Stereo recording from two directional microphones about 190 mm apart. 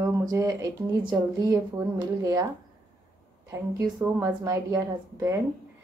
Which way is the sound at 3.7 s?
15° right (ahead or behind).